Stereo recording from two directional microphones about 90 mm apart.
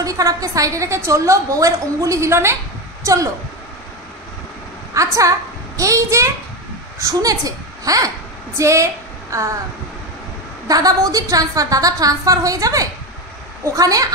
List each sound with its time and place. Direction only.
0.0 s a woman's voice: 40° right (ahead or behind)
4.9 s a woman's voice: 40° right (ahead or behind)
10.7 s a woman's voice: 40° right (ahead or behind)